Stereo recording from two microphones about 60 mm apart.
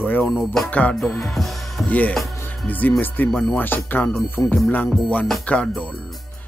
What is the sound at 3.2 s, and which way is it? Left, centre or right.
Speech, centre.